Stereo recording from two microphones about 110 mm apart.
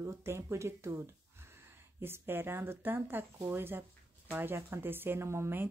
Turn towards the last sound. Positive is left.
turn(degrees=-20)  # may be behind; listen again after turning